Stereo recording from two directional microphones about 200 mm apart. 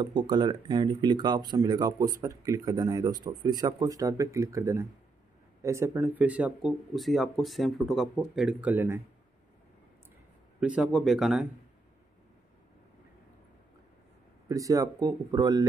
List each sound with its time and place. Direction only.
0.0 s speech: 20° right (ahead or behind)
10.6 s speech: 5° right (ahead or behind)
14.5 s speech: 15° right (ahead or behind)